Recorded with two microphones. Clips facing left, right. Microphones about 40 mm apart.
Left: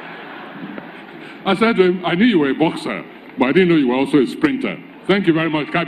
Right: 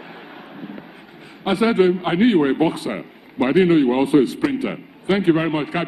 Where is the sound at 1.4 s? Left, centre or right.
Left.